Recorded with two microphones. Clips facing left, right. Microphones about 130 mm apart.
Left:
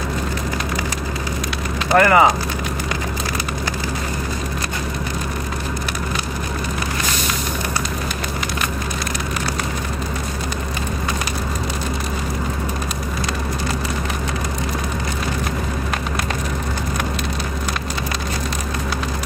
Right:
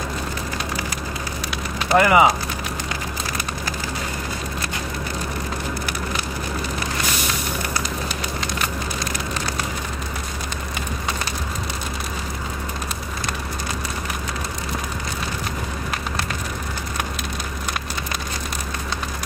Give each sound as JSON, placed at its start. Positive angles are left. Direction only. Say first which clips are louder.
{"t": 2.0, "sound": "speech", "louder": "left 2 dB", "side_deg": -15}